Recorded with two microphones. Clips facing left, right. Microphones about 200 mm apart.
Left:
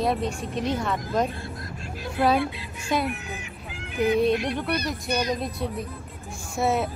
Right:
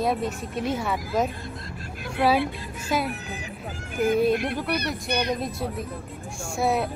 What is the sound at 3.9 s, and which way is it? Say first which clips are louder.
Speech: even; 50° right (ahead or behind).